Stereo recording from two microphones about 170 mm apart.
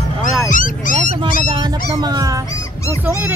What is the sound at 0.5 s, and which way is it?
Dog, 50° left (ahead or behind).